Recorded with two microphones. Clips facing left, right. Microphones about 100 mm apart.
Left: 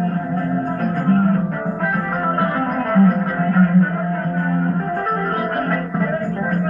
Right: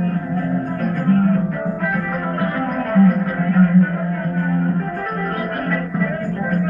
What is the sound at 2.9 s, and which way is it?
Music, 40° left (ahead or behind).